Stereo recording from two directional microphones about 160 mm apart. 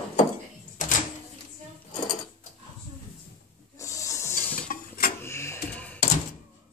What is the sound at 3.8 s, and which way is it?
Rub, 20° left (ahead or behind).